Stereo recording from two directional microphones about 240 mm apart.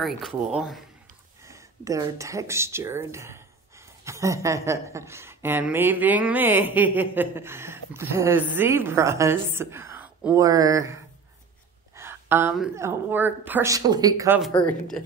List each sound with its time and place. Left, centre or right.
0.5 s a woman's voice: centre
14.7 s a woman's voice: centre